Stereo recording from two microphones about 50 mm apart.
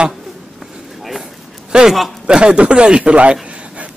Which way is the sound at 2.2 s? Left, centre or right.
Centre.